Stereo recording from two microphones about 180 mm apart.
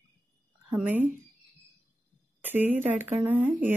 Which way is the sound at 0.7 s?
10° right (ahead or behind).